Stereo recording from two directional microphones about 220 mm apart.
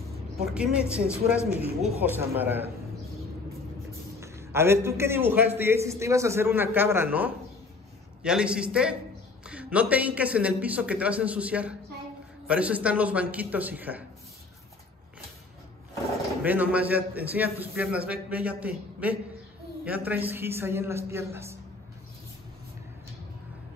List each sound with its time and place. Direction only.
0.4 s a man's voice: 5° right (ahead or behind)
4.2 s a man's voice: 10° right (ahead or behind)
16.4 s a man's voice: 5° right (ahead or behind)